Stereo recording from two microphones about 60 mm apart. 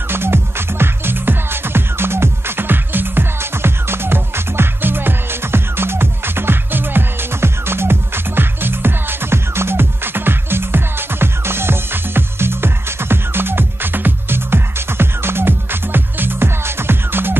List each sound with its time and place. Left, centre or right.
0.1 s music: right